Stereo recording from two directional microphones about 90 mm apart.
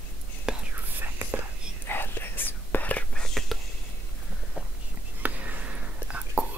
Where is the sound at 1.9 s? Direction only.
25° left (ahead or behind).